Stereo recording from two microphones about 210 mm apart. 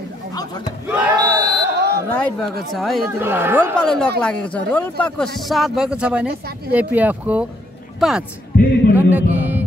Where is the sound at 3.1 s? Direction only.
10° right (ahead or behind).